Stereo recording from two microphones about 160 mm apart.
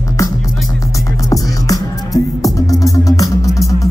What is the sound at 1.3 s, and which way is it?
Music, 20° left (ahead or behind).